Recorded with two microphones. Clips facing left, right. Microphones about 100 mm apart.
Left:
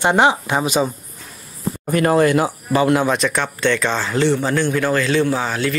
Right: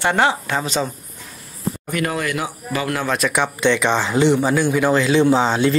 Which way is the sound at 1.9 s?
35° left (ahead or behind).